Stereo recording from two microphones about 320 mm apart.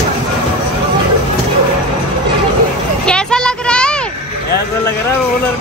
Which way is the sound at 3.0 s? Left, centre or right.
Centre.